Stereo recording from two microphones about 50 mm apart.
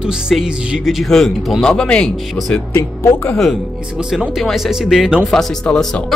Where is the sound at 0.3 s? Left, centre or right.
Centre.